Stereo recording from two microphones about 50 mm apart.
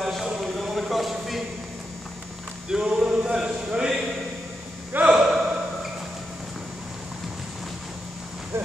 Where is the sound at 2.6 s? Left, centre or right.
Centre.